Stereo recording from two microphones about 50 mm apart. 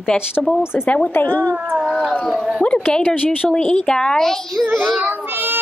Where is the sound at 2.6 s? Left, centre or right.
Left; by 4.7 s centre.